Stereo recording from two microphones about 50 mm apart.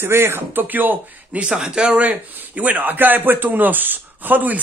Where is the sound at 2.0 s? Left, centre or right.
Right.